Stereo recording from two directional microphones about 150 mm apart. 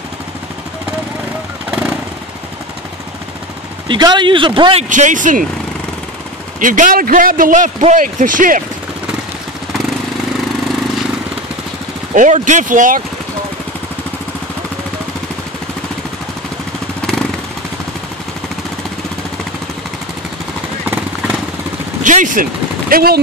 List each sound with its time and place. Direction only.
3.9 s speech: 30° right (ahead or behind)
4.8 s a man's voice: 60° right (ahead or behind)
6.6 s a man's voice: 60° right (ahead or behind)
12.1 s a man's voice: 55° right (ahead or behind)
17.0 s motorcycle: 5° left (ahead or behind)
20.8 s jackhammer: 15° right (ahead or behind)
22.0 s speech: 60° right (ahead or behind); by 23.1 s 75° right (ahead or behind)